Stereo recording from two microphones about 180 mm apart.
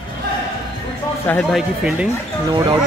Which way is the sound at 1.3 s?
5° left (ahead or behind).